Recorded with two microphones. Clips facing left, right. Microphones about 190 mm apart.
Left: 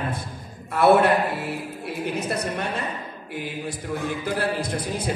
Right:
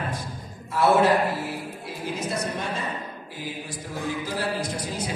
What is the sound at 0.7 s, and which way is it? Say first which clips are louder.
A man's voice: left 2 dB; 60° left (ahead or behind).